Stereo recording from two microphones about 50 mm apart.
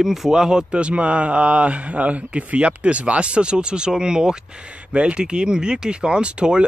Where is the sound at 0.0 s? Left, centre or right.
Centre.